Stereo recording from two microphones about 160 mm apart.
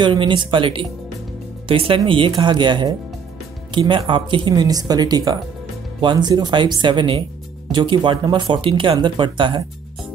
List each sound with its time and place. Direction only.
0.0 s speech: 30° right (ahead or behind)